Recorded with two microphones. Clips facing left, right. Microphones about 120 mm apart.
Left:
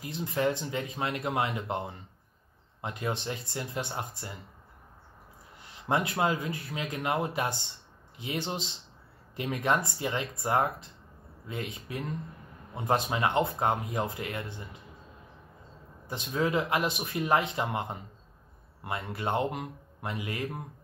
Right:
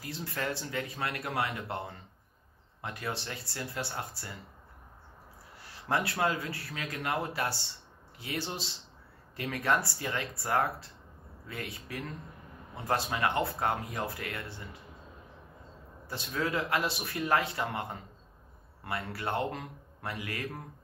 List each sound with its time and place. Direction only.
0.0 s speech: 20° left (ahead or behind)
5.6 s speech: 20° left (ahead or behind)
16.1 s speech: 20° left (ahead or behind)